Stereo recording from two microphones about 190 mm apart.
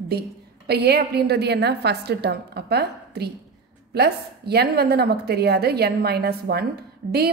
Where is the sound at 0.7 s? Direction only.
55° right (ahead or behind).